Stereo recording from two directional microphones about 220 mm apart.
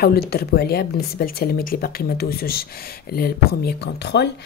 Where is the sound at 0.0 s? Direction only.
45° left (ahead or behind).